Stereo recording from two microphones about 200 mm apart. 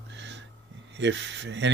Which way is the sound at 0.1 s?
60° right (ahead or behind).